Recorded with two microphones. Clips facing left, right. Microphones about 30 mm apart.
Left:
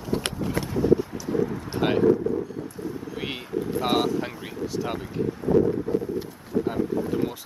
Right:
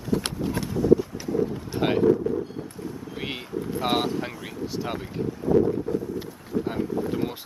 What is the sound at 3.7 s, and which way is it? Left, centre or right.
Wind, centre.